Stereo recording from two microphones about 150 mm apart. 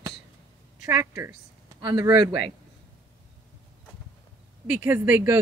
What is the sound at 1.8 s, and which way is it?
Speech, 30° right (ahead or behind).